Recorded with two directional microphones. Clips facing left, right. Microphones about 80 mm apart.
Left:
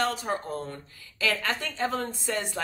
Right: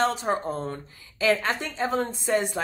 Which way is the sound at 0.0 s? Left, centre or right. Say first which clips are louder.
Right 4 dB; right.